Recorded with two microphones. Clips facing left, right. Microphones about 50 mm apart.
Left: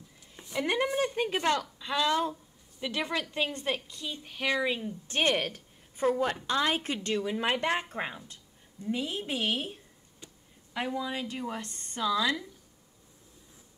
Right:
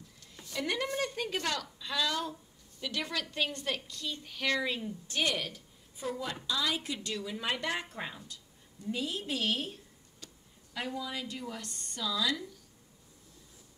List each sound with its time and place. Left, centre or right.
0.4 s a woman's voice: left
5.0 s a woman's voice: left